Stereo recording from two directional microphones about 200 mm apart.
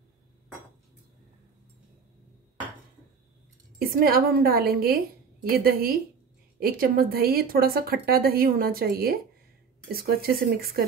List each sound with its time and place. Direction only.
4.0 s a woman's voice: 50° right (ahead or behind)